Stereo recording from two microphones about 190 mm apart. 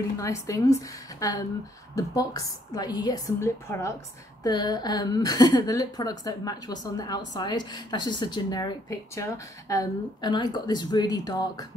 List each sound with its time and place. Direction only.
0.2 s a woman's voice: 15° left (ahead or behind)